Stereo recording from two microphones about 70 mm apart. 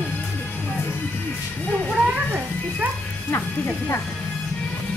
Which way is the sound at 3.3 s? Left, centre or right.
Left.